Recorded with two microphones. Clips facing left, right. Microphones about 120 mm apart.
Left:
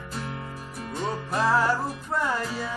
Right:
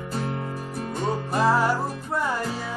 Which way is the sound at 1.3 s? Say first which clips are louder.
Right 1 dB; 10° right (ahead or behind).